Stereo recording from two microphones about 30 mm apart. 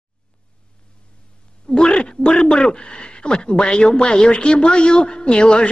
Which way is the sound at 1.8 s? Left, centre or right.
Left.